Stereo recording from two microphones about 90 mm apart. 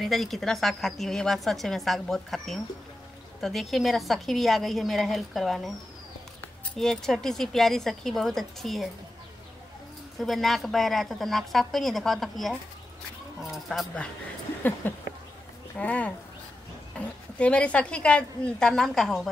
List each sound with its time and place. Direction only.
0.0 s a woman's voice: centre (ahead or behind)
6.8 s a woman's voice: 5° left (ahead or behind)
10.1 s a woman's voice: centre (ahead or behind)
14.8 s a woman's voice: 20° left (ahead or behind); by 19.2 s 5° left (ahead or behind)